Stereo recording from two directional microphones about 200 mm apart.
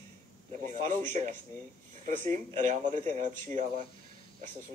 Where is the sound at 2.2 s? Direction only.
40° right (ahead or behind).